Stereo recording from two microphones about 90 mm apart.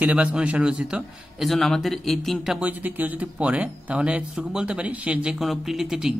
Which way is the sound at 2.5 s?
20° right (ahead or behind).